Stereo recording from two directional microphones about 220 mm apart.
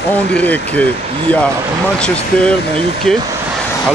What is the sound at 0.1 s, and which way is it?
Speech, 5° left (ahead or behind).